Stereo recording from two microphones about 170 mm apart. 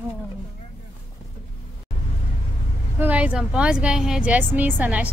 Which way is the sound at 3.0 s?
10° right (ahead or behind).